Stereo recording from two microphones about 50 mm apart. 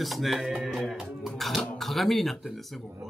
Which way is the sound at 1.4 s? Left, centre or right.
Centre.